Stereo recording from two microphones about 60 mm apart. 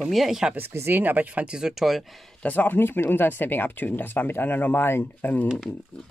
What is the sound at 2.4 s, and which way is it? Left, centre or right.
Speech, left.